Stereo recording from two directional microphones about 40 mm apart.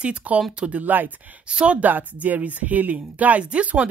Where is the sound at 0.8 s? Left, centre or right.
Right.